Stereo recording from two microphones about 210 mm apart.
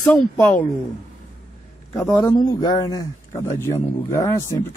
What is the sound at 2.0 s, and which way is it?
A man's voice, 15° left (ahead or behind).